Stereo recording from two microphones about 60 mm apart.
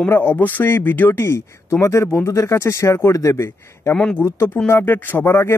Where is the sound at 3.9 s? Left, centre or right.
Centre.